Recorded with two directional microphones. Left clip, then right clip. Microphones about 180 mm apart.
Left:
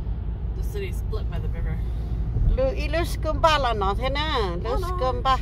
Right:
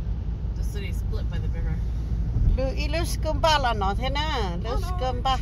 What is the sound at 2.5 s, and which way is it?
Speech, 5° left (ahead or behind).